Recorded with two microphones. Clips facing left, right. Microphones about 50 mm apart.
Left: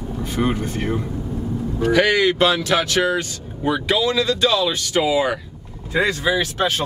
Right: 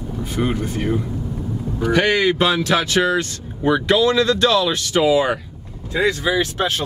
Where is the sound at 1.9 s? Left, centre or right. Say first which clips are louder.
Even; centre.